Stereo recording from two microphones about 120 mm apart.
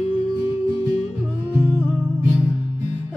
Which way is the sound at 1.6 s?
20° left (ahead or behind).